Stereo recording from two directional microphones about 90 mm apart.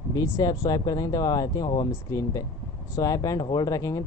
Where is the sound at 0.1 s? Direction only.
45° left (ahead or behind).